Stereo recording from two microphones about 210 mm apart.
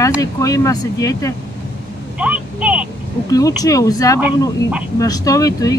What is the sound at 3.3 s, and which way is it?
Speech, 15° left (ahead or behind).